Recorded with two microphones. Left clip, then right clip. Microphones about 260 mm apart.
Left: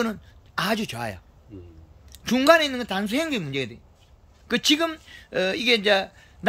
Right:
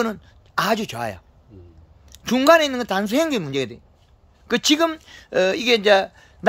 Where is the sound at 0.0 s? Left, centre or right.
Centre.